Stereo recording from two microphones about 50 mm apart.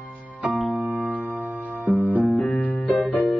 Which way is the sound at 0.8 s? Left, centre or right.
Right.